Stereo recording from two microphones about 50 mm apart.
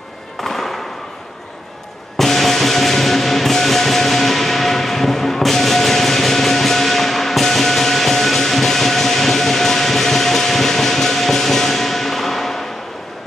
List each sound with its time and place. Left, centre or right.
0.4 s music: centre
2.1 s music: centre